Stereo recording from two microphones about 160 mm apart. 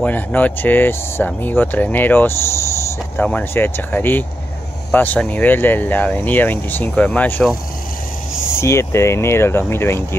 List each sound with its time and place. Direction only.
0.0 s speech: 10° left (ahead or behind)
8.5 s speech: 15° left (ahead or behind)